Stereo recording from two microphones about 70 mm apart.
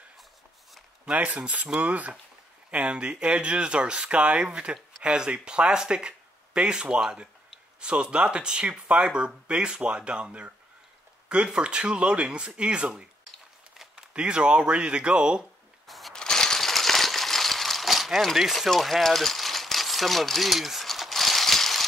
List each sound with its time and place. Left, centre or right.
1.0 s speech: centre
14.1 s speech: centre
15.9 s shuffling cards: centre
16.2 s a sound: centre